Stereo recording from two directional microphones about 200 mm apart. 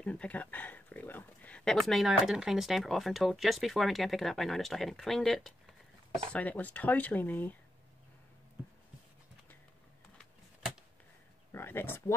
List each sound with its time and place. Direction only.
0.0 s speech: 5° left (ahead or behind)
11.5 s speech: 10° left (ahead or behind)